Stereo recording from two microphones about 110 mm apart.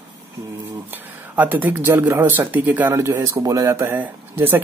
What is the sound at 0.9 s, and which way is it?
Speech, 15° right (ahead or behind).